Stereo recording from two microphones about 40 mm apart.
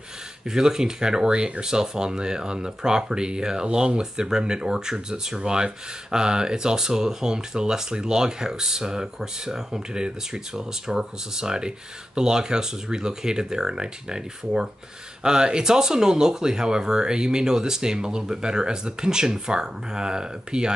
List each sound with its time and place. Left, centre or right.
0.5 s speech: centre